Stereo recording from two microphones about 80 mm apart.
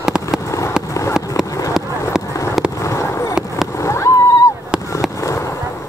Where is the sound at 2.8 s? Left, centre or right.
Left.